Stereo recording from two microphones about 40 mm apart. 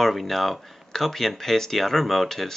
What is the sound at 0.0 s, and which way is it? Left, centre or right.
Speech, centre.